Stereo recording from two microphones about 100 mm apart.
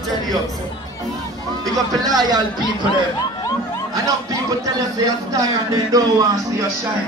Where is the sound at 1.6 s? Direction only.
40° right (ahead or behind).